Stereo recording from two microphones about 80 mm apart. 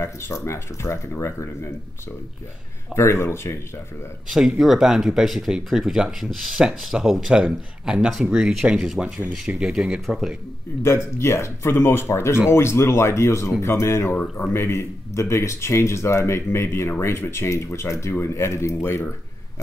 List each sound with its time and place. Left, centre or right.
0.0 s speech: left
2.9 s speech: left
4.3 s speech: centre
10.8 s speech: left